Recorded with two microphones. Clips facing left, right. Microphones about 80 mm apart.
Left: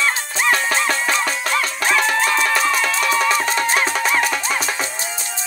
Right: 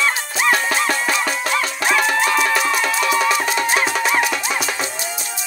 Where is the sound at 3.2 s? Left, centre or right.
Left.